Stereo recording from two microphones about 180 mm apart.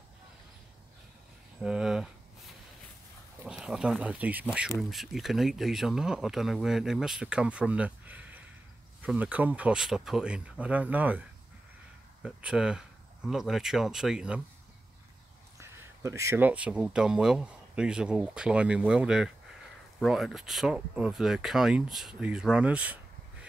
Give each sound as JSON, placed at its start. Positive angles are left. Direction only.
{"t": 1.6, "sound": "a sound", "side_deg": -5}
{"t": 3.4, "sound": "speech", "side_deg": -5}
{"t": 15.6, "sound": "speech", "side_deg": -15}